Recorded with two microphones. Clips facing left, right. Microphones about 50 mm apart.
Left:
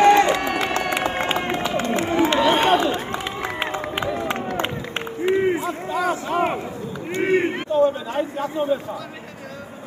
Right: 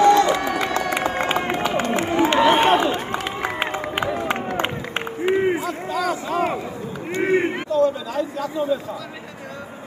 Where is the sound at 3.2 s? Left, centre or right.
Centre.